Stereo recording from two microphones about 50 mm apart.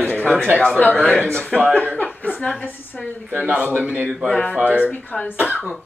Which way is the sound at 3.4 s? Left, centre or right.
Right.